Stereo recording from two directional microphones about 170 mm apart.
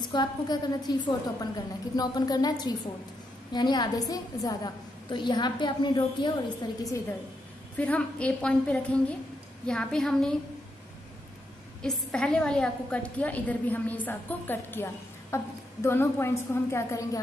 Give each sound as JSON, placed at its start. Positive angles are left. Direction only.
{"t": 0.0, "sound": "a woman's voice", "side_deg": 25}
{"t": 7.7, "sound": "a woman's voice", "side_deg": 10}
{"t": 11.8, "sound": "a woman's voice", "side_deg": 5}